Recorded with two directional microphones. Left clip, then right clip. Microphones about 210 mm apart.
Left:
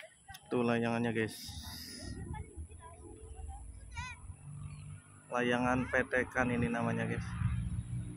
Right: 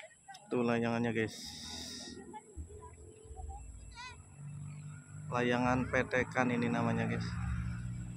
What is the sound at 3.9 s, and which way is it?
Vehicle, 20° left (ahead or behind).